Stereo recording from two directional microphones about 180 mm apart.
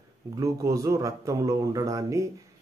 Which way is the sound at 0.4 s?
15° right (ahead or behind).